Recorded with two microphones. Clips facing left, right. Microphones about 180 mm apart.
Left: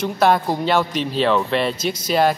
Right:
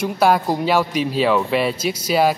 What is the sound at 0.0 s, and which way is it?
Speech, 10° right (ahead or behind).